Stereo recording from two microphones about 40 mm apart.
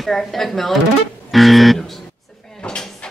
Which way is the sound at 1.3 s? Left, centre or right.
Centre.